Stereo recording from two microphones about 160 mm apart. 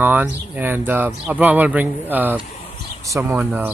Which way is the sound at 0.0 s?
10° right (ahead or behind).